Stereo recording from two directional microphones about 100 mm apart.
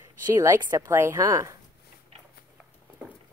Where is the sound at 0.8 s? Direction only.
25° right (ahead or behind).